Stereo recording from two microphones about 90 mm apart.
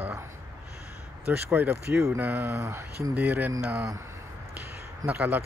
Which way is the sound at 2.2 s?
20° right (ahead or behind).